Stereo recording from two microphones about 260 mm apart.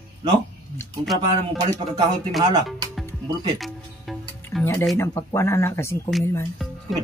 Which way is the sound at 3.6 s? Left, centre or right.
Centre.